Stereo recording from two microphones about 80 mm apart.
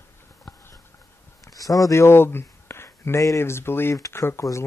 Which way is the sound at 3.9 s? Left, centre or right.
Left.